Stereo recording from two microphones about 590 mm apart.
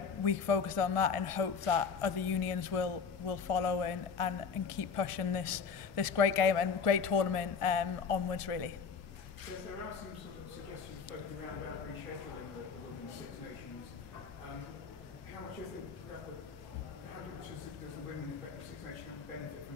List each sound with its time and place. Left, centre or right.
0.2 s a man's voice: left